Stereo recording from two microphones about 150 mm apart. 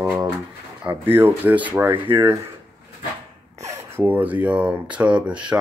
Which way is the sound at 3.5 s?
50° right (ahead or behind).